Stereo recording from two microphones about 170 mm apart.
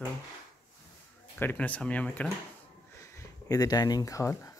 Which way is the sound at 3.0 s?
20° left (ahead or behind).